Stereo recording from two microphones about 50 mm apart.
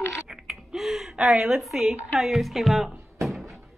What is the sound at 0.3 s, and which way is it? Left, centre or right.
Gasp, centre.